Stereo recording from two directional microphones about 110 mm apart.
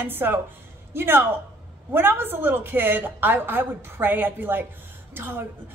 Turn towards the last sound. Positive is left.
turn(degrees=-20)  # may be behind; listen again after turning